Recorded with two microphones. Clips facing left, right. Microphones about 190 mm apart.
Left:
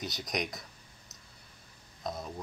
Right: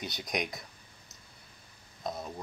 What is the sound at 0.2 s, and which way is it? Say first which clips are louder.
Speech: right 2 dB; centre (ahead or behind).